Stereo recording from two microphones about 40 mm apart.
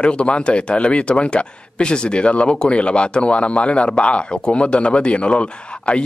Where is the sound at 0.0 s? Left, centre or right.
Left.